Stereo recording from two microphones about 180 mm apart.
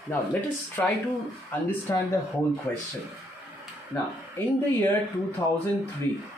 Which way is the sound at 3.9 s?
10° left (ahead or behind).